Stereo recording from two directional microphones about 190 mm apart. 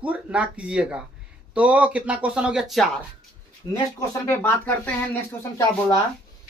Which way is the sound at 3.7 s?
10° left (ahead or behind).